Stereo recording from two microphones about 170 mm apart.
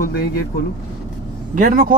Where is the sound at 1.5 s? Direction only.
55° right (ahead or behind).